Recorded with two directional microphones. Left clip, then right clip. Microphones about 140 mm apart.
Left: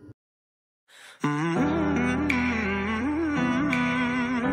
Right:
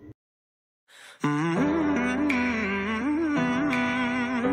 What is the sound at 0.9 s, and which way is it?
Music, centre (ahead or behind).